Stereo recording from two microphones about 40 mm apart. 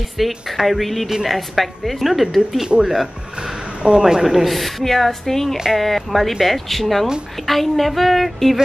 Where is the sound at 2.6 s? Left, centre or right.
Centre.